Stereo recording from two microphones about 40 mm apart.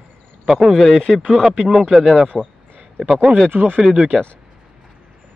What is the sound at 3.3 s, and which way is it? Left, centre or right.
Speech, right.